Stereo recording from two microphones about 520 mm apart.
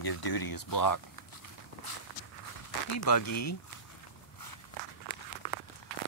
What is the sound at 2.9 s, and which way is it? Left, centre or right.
Speech, left.